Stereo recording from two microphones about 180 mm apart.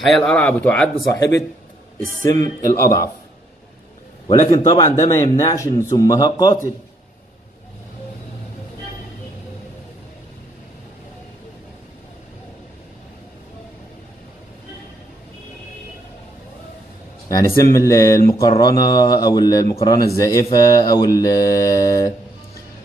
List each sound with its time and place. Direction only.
0.0 s speech: centre (ahead or behind)
2.7 s speech: 15° left (ahead or behind)
4.5 s a man's voice: 20° left (ahead or behind)
17.3 s a man's voice: 20° left (ahead or behind)